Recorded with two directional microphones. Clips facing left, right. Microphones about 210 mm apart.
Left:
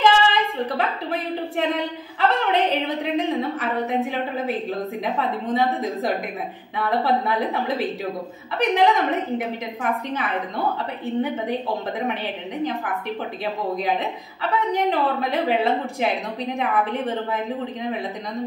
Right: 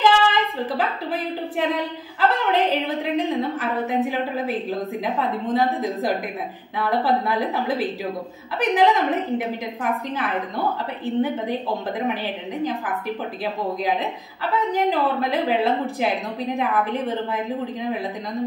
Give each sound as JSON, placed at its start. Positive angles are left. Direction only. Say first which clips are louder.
{"t": 0.0, "sound": "a woman's voice", "louder": "even", "side_deg": 0}
{"t": 14.4, "sound": "a woman's voice", "louder": "even", "side_deg": 0}